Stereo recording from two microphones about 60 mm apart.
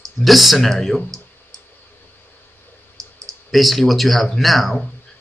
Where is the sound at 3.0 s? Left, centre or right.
Right.